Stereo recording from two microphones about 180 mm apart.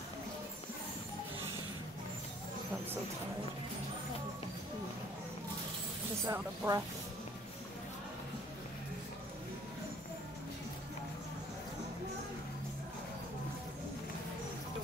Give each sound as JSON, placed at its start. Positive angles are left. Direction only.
{"t": 6.2, "sound": "speech", "side_deg": -15}